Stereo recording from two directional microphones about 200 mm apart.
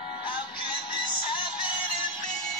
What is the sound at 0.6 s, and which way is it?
Music, 25° left (ahead or behind).